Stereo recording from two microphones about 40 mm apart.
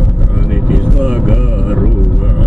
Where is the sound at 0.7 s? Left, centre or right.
Centre.